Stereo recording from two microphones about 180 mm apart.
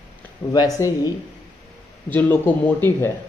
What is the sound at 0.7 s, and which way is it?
Speech, 15° left (ahead or behind).